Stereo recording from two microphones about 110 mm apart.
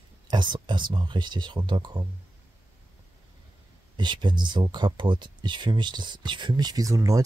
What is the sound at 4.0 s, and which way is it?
Speech, 45° right (ahead or behind).